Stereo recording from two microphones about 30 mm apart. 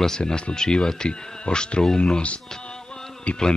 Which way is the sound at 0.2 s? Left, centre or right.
Left.